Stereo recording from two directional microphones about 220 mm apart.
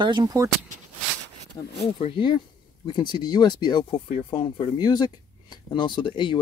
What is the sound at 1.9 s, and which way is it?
Speech, 25° left (ahead or behind).